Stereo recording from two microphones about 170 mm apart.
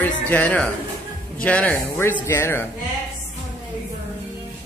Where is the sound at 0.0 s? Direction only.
10° left (ahead or behind).